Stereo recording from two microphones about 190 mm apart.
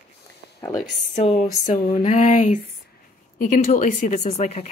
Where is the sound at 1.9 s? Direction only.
35° left (ahead or behind).